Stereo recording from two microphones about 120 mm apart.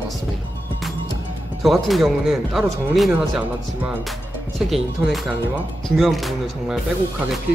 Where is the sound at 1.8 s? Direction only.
Centre (ahead or behind).